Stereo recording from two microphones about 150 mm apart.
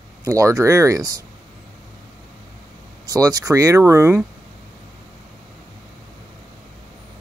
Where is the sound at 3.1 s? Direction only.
25° right (ahead or behind).